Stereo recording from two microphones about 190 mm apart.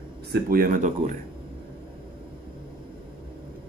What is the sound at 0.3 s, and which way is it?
Speech, 50° right (ahead or behind).